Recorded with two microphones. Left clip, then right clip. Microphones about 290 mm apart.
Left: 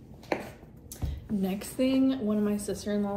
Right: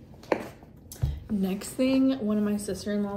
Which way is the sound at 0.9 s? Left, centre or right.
Centre.